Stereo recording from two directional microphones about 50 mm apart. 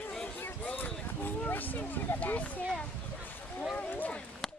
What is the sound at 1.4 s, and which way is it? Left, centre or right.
Speech, left.